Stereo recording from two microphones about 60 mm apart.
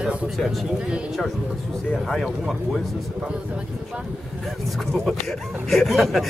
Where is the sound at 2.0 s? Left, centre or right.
Centre.